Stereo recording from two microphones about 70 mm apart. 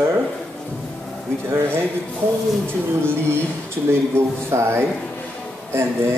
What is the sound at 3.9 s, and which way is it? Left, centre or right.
Speech, right.